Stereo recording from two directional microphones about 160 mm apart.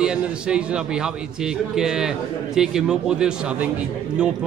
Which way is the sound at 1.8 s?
5° right (ahead or behind).